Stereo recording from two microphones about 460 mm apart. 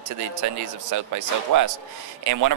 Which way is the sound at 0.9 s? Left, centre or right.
Right.